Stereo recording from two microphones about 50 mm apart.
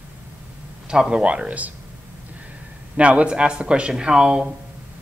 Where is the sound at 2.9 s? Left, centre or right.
Right.